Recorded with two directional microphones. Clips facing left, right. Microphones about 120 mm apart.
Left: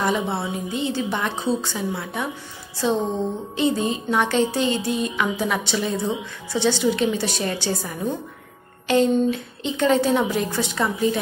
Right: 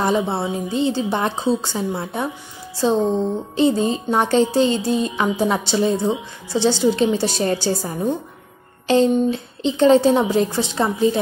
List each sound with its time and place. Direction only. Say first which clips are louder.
0.0 s speech: right 3 dB; 30° right (ahead or behind)
8.8 s a sound: right 3 dB; 30° right (ahead or behind)
9.3 s a woman's voice: right 4 dB; 30° right (ahead or behind)